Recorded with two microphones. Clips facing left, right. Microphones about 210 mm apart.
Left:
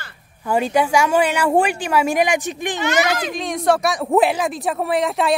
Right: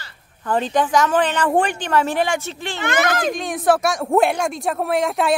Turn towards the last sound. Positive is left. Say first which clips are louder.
# even
turn(degrees=0)  # may be behind; listen again after turning